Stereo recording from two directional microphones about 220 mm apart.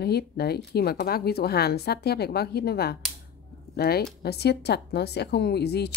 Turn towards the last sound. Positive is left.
turn(degrees=50)  # may be behind; listen again after turning